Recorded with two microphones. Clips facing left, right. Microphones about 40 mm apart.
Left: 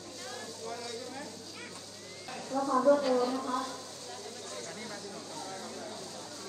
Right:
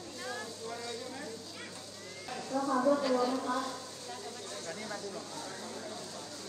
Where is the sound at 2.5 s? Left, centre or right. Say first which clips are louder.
Left 3 dB; centre.